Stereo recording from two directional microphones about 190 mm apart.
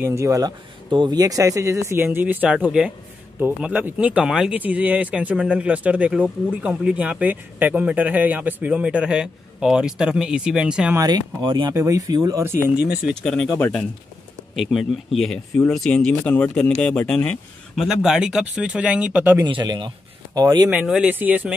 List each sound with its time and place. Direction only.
0.0 s speech: 15° right (ahead or behind)
11.0 s speech: 20° right (ahead or behind)
12.6 s speech: 5° right (ahead or behind)
19.4 s speech: 25° right (ahead or behind)
20.7 s speech: 5° right (ahead or behind)